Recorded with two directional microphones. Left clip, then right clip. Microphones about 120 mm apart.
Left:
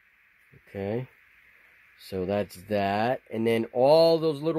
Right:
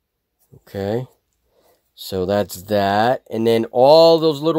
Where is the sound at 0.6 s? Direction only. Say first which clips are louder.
Right 9 dB; 20° right (ahead or behind).